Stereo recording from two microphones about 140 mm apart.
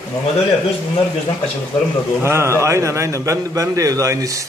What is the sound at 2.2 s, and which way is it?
A man's voice, 20° right (ahead or behind).